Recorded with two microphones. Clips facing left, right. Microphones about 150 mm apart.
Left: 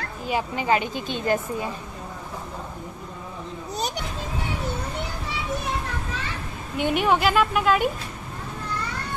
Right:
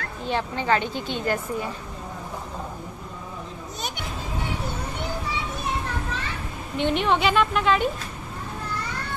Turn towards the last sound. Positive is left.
turn(degrees=5)  # may be behind; listen again after turning